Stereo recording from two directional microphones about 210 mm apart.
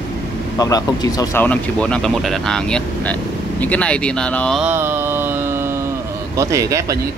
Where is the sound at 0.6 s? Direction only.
15° left (ahead or behind).